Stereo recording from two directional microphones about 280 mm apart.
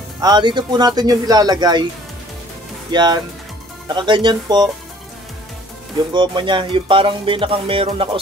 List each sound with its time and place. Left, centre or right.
0.2 s music: centre
2.9 s speech: centre
3.9 s music: centre
6.1 s music: centre